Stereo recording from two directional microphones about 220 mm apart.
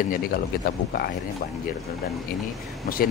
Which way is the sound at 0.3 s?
45° left (ahead or behind).